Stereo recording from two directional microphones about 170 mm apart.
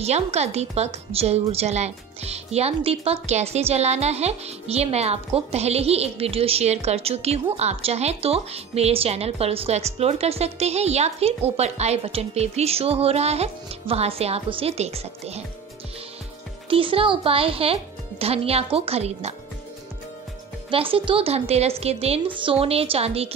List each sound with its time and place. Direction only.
0.0 s a woman's voice: 40° right (ahead or behind)
16.6 s a woman's voice: 30° right (ahead or behind)
20.7 s a woman's voice: 30° right (ahead or behind)